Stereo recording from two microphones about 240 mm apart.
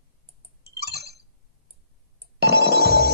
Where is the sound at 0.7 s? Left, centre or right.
Right.